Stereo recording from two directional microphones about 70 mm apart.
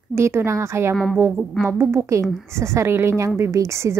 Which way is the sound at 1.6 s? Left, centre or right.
Right.